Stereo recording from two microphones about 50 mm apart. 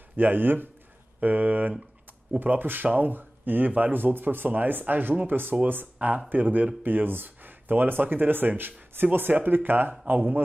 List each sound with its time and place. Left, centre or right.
0.1 s speech: right
5.9 s speech: right